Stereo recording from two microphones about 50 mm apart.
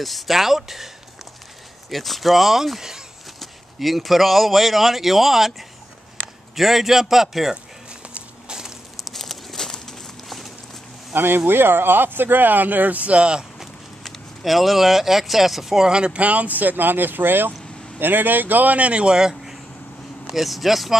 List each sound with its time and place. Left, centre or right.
0.0 s speech: centre
1.9 s speech: centre
8.1 s walk: centre
9.0 s a sound: centre
11.1 s speech: right; by 13.5 s centre
14.0 s speech: centre
15.9 s speech: right
20.2 s speech: centre